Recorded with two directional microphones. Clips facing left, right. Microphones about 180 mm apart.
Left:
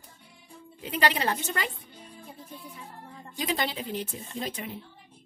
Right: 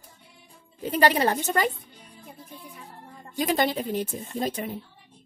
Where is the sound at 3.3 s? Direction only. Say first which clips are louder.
Right 6 dB; 50° right (ahead or behind).